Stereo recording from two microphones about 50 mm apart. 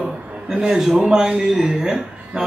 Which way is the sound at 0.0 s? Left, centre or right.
Centre.